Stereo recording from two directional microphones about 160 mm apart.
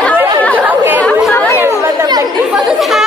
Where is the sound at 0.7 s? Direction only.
15° right (ahead or behind).